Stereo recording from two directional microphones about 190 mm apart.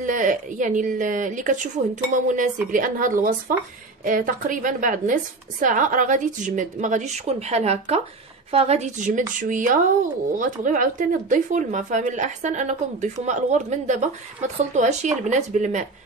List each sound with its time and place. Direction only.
0.0 s a woman's voice: 45° right (ahead or behind)